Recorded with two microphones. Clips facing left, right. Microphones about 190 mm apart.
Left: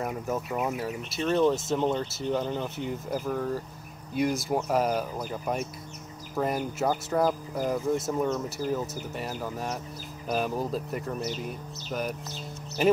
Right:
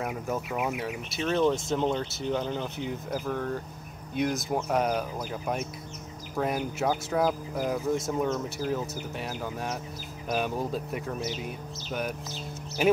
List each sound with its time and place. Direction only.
0.0 s speech: centre (ahead or behind)